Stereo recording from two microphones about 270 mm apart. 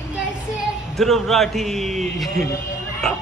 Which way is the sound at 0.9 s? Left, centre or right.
Centre.